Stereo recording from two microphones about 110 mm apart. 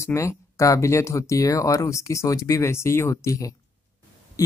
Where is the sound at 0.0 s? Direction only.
25° left (ahead or behind).